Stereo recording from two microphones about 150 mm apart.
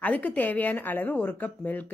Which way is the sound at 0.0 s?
10° left (ahead or behind).